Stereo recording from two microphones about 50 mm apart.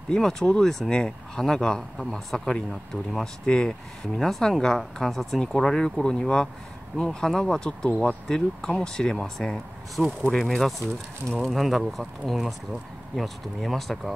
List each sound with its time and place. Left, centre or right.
0.1 s speech: centre
2.7 s speech: centre
3.4 s speech: centre
10.0 s speech: centre
10.4 s speech: centre